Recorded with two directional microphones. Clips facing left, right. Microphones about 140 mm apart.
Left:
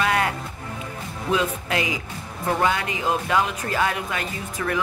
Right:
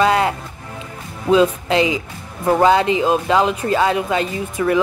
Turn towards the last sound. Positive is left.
turn(degrees=-20)  # may be behind; listen again after turning